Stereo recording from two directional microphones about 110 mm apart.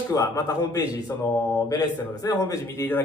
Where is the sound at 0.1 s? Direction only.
35° left (ahead or behind).